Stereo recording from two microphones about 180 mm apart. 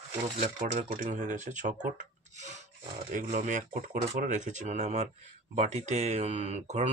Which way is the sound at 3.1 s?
50° right (ahead or behind).